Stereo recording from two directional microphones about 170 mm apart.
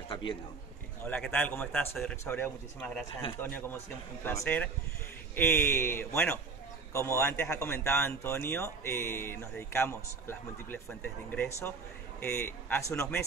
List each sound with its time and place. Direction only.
1.0 s speech: 10° left (ahead or behind)